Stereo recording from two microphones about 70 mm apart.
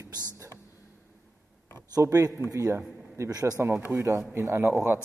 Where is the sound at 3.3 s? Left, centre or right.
Right.